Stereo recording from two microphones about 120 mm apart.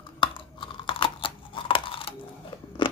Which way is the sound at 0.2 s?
45° left (ahead or behind).